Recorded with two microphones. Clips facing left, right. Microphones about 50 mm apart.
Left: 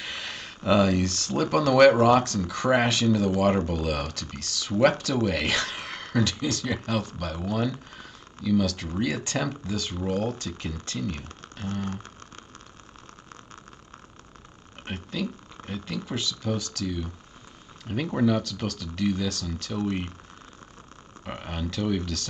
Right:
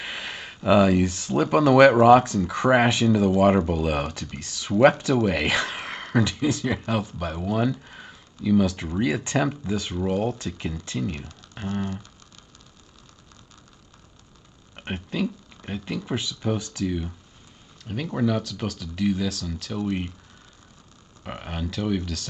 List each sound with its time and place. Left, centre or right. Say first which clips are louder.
0.0 s speech: right 2 dB; centre
14.9 s speech: right 4 dB; centre
18.1 s speech: left 1 dB; centre
21.2 s speech: right 1 dB; centre